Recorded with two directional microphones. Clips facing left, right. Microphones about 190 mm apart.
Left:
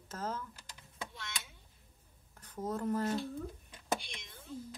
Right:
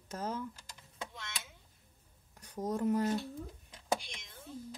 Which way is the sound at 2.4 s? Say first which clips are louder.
Right 3 dB; 15° right (ahead or behind).